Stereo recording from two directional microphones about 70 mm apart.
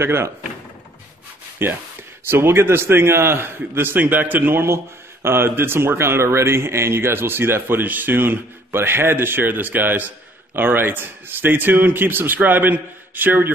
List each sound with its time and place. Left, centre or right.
0.0 s a man's voice: right
1.6 s a man's voice: right